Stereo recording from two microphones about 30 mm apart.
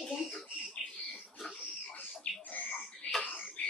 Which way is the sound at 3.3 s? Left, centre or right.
Left.